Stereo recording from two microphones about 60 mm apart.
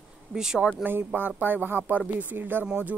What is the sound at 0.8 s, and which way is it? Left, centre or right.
Speech, right.